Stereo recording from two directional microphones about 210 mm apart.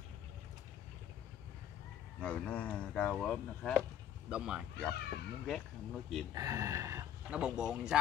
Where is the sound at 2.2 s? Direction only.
5° left (ahead or behind).